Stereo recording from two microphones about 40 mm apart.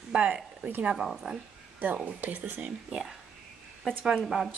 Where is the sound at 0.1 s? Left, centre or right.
Right.